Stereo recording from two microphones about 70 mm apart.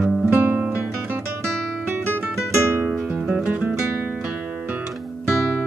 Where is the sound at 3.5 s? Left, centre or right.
Centre.